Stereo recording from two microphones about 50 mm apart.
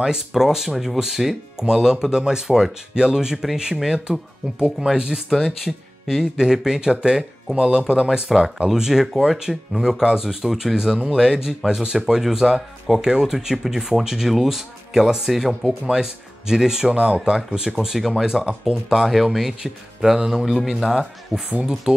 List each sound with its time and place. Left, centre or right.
0.0 s speech: centre
4.7 s speech: centre
16.9 s speech: right
17.8 s speech: centre
18.2 s speech: centre